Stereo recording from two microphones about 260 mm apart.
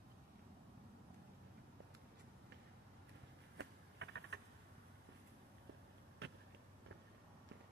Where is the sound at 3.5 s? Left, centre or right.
Right.